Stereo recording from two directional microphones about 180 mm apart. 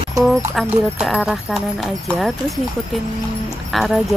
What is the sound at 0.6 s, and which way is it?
Speech, 5° right (ahead or behind).